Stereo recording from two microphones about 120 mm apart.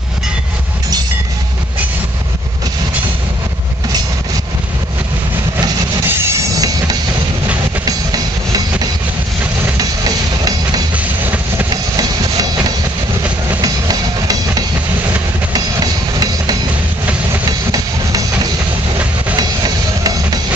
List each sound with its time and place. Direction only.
6.0 s train: 30° right (ahead or behind)
9.8 s a sound: 35° right (ahead or behind)
11.0 s train: 15° right (ahead or behind)
11.7 s a sound: 30° right (ahead or behind)
13.6 s music: 30° right (ahead or behind)
17.5 s train: 30° right (ahead or behind)
19.3 s music: 35° right (ahead or behind)